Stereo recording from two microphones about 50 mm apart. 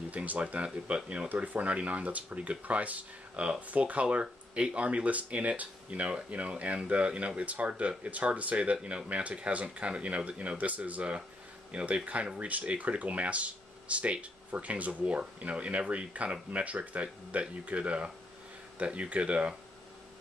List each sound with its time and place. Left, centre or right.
0.1 s speech: right
1.3 s speech: right